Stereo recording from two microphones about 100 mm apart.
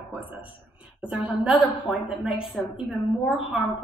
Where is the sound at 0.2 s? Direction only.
15° right (ahead or behind).